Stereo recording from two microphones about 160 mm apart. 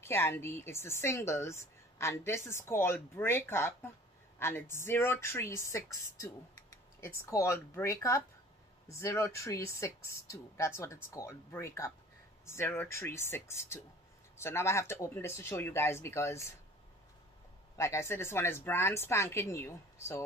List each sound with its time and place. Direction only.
0.0 s speech: 15° left (ahead or behind)
7.0 s speech: 20° left (ahead or behind)
17.7 s speech: 15° left (ahead or behind)